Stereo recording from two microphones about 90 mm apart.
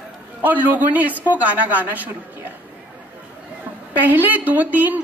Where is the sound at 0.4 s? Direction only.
20° right (ahead or behind).